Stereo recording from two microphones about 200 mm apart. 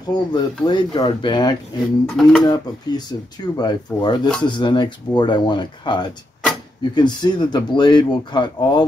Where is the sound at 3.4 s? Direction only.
20° left (ahead or behind).